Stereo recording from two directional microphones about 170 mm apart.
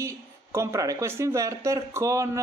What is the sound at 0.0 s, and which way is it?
Speech, 15° right (ahead or behind).